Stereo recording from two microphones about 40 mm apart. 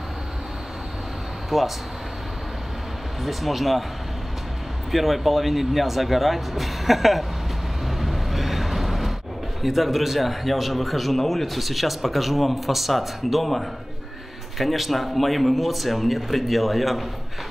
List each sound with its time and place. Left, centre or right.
1.5 s a man's voice: centre
3.2 s a man's voice: centre
4.9 s a man's voice: centre
7.8 s vehicle: centre
9.6 s a man's voice: centre